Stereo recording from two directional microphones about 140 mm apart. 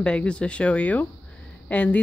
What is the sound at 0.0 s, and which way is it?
Speech, 10° left (ahead or behind).